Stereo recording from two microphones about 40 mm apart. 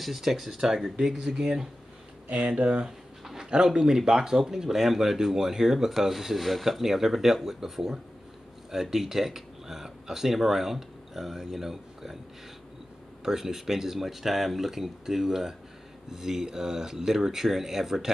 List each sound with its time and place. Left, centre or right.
0.0 s speech: centre
2.4 s speech: right; by 12.2 s centre
13.2 s speech: centre